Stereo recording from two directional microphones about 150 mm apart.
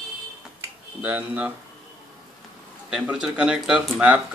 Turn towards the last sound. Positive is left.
turn(degrees=-10)  # may be behind; listen again after turning